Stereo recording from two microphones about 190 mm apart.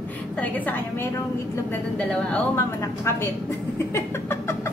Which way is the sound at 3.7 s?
15° left (ahead or behind).